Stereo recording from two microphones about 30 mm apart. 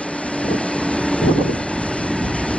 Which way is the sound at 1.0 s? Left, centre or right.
Left.